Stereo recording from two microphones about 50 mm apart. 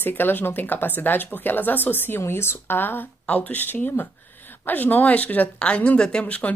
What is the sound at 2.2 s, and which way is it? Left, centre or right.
Speech, left.